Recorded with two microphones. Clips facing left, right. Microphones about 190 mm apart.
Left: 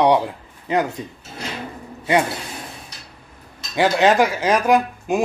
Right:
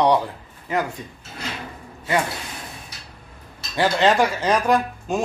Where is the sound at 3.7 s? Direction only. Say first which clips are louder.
Left 2 dB; 15° left (ahead or behind).